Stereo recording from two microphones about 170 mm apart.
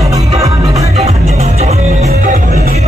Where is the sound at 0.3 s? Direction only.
20° right (ahead or behind).